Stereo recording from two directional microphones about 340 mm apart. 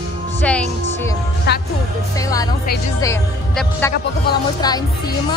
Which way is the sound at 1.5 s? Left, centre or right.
Left.